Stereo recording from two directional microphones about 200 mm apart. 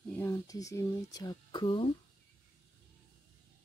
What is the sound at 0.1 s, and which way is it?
Speech, 10° left (ahead or behind).